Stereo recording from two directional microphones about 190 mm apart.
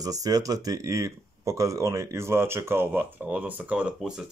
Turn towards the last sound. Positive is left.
turn(degrees=-5)  # may be behind; listen again after turning